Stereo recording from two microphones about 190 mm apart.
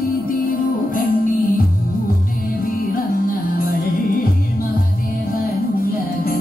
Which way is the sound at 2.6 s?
50° left (ahead or behind).